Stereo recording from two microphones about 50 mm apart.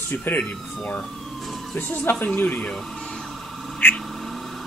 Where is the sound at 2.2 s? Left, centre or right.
Left.